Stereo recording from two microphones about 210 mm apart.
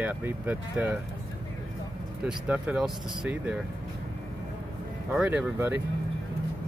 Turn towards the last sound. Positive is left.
turn(degrees=-10)  # may be behind; listen again after turning